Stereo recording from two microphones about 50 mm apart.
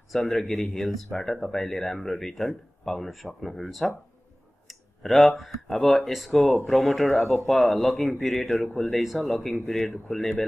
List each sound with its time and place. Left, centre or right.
0.4 s speech: centre
8.6 s speech: centre
8.9 s speech: centre